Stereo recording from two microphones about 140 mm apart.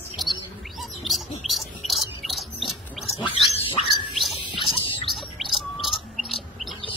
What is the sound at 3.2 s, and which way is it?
Roaring cats, 40° left (ahead or behind).